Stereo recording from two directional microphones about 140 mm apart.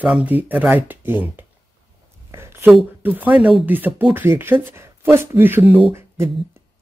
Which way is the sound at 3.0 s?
10° right (ahead or behind).